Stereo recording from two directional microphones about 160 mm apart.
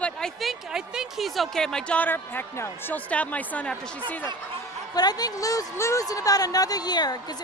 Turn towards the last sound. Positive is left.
turn(degrees=25)  # may be behind; listen again after turning